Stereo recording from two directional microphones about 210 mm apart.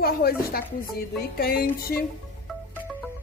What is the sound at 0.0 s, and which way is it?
Speech, 45° left (ahead or behind).